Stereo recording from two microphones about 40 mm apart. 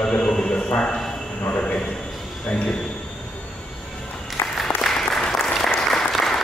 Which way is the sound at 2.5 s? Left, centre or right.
Left.